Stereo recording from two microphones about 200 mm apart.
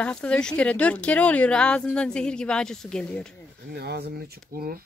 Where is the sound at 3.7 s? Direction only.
55° right (ahead or behind).